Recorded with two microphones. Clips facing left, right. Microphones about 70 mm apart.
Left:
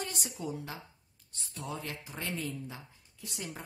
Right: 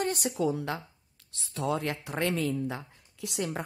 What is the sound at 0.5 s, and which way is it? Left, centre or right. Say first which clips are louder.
Speech: right 9 dB; right.